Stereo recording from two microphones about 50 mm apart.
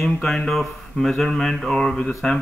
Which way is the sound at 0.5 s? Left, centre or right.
Centre.